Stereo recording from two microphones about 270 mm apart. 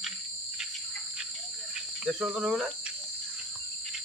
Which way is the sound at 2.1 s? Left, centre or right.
Centre.